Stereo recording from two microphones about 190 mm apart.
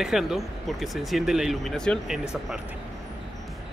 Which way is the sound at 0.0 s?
Centre (ahead or behind).